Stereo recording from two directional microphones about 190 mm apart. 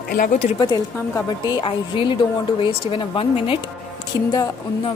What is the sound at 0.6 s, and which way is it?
A woman's voice, 20° left (ahead or behind).